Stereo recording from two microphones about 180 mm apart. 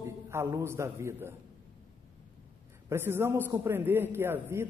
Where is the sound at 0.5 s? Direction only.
15° right (ahead or behind).